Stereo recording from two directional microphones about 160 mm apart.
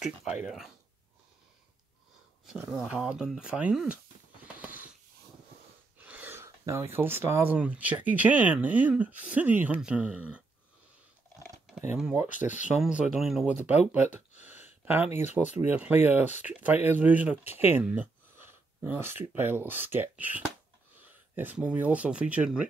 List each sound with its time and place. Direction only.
0.0 s speech: 5° right (ahead or behind)
2.4 s speech: 5° right (ahead or behind)
4.6 s a sound: 10° right (ahead or behind)
5.9 s speech: 10° right (ahead or behind)
11.4 s typing: 5° right (ahead or behind)
12.0 s speech: 5° right (ahead or behind)
14.1 s a sound: 10° right (ahead or behind)
15.0 s speech: 45° left (ahead or behind)
15.3 s speech: 10° right (ahead or behind)